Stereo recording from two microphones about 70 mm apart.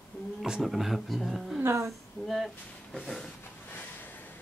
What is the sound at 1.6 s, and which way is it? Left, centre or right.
Speech, right.